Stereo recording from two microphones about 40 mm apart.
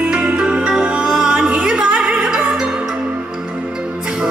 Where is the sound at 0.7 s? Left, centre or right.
Centre.